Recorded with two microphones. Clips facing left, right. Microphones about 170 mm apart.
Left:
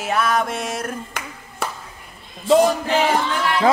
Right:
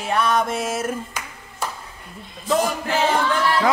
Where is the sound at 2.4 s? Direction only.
20° left (ahead or behind).